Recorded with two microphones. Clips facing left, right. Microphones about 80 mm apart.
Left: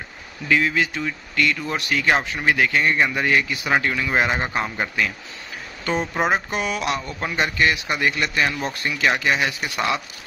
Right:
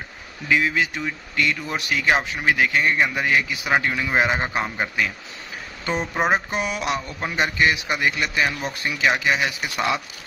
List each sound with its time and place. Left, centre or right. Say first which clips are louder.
0.5 s speech: left 1 dB; centre
5.9 s mantra: even; centre
7.2 s speech: even; centre